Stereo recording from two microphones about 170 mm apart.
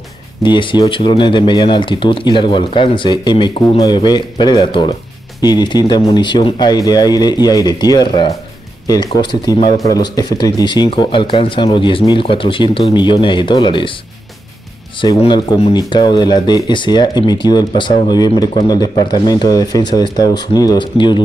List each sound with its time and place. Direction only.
0.4 s speech: 30° left (ahead or behind)
15.0 s speech: 25° left (ahead or behind)